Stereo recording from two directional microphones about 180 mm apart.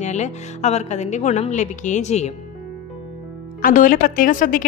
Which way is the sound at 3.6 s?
50° left (ahead or behind).